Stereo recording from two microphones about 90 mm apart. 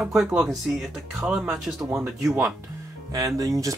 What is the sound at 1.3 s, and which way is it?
Speech, 10° right (ahead or behind).